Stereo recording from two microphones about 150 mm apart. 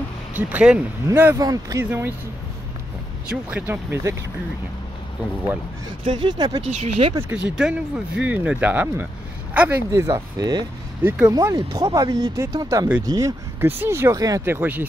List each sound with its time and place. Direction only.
0.3 s speech: 10° right (ahead or behind)
1.9 s speech: 15° right (ahead or behind)
3.3 s speech: 10° right (ahead or behind)
6.0 s speech: 30° right (ahead or behind)
6.7 s speech: 40° right (ahead or behind)
7.2 s speech: 5° right (ahead or behind)